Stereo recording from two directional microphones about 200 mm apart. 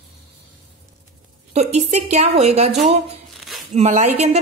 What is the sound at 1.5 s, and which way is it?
A woman's voice, 35° right (ahead or behind).